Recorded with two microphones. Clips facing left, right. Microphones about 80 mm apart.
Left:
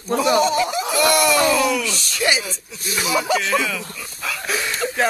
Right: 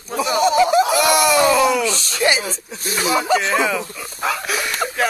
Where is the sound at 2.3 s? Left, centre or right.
Right.